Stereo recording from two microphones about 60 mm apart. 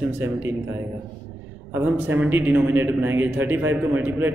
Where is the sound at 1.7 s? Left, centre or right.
Right.